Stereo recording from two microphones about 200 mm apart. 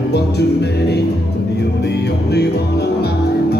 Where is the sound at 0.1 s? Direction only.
55° left (ahead or behind).